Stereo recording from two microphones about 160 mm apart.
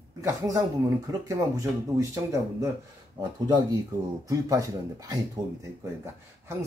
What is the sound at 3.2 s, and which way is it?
Speech, 25° right (ahead or behind).